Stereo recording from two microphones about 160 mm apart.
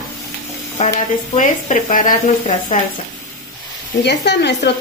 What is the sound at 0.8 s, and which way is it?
Speech, 45° left (ahead or behind).